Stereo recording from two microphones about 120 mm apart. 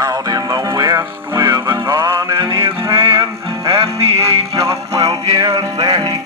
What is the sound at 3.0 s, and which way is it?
Music, 50° right (ahead or behind).